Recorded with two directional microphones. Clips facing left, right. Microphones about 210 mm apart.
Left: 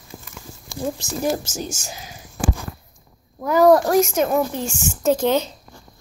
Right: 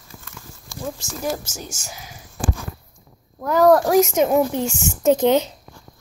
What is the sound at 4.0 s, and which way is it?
A woman's voice, 20° right (ahead or behind).